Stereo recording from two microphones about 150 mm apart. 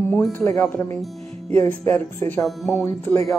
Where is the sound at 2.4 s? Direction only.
Centre (ahead or behind).